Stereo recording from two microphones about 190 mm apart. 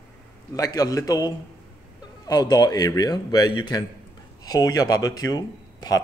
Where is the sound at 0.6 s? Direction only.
20° left (ahead or behind).